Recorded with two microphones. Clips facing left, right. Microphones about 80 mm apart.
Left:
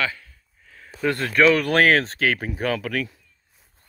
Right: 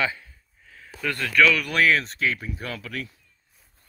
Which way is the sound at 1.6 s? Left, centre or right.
Left.